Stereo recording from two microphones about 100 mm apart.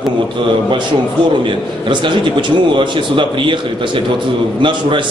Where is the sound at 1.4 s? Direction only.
55° right (ahead or behind).